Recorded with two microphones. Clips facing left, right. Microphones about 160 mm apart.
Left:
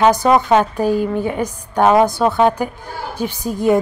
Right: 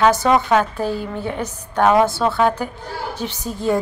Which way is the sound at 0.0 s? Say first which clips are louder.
Left 2 dB; 15° left (ahead or behind).